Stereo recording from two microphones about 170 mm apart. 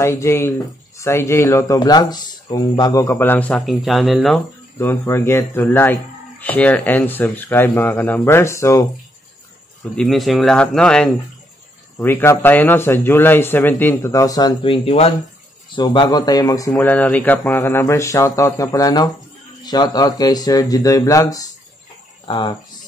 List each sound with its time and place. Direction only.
0.0 s speech: 15° left (ahead or behind); by 4.4 s centre (ahead or behind)
4.7 s speech: 15° left (ahead or behind)
9.9 s speech: centre (ahead or behind); by 16.7 s 20° left (ahead or behind)
16.7 s speech: 10° left (ahead or behind); by 22.6 s 25° left (ahead or behind)